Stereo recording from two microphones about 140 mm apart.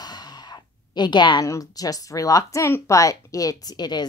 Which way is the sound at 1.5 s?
25° left (ahead or behind).